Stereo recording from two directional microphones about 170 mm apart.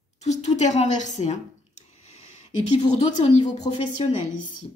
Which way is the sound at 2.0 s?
40° left (ahead or behind).